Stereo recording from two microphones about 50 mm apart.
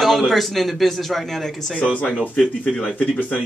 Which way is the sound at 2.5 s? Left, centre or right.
Left.